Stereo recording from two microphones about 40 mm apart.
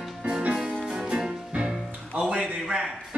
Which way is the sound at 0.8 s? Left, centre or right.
Centre.